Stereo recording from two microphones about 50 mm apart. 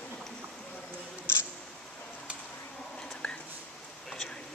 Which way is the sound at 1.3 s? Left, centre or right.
Left.